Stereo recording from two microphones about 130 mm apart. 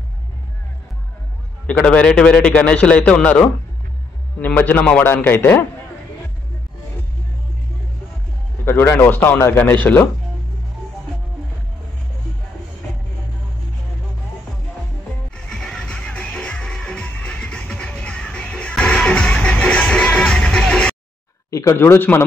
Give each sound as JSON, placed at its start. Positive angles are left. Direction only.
{"t": 1.7, "sound": "a man's voice", "side_deg": 10}
{"t": 8.6, "sound": "a man's voice", "side_deg": 15}
{"t": 15.3, "sound": "music", "side_deg": 5}
{"t": 21.5, "sound": "speech", "side_deg": 25}